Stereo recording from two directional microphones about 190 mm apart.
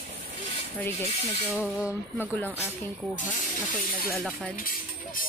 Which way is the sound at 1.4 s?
5° right (ahead or behind).